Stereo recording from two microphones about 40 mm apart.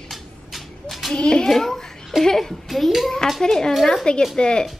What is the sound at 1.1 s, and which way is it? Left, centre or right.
Speech, centre.